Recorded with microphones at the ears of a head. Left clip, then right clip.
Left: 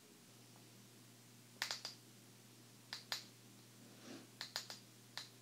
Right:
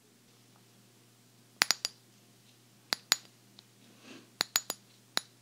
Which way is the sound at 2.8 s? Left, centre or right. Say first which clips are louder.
Right 16 dB; right.